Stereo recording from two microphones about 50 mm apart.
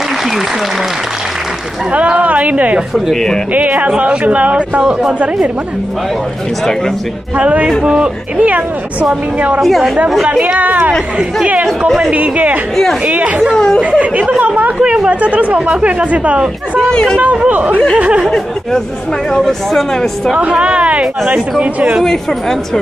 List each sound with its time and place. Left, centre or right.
1.9 s speech: right
3.9 s speech: right
7.3 s speech: right
9.6 s a woman's voice: centre
10.4 s speech: right
12.1 s speech: right
17.5 s speech: right
19.4 s speech: centre
20.6 s speech: right
22.0 s speech: centre